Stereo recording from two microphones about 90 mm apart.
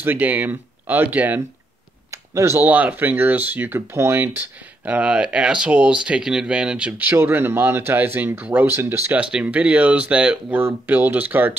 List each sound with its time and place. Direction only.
0.0 s speech: 20° right (ahead or behind)
2.0 s a sound: 35° right (ahead or behind)
2.6 s speech: 20° right (ahead or behind)
9.1 s speech: 15° right (ahead or behind)